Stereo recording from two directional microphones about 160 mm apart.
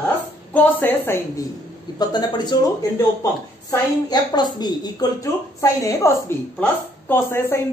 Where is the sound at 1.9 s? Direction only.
25° left (ahead or behind).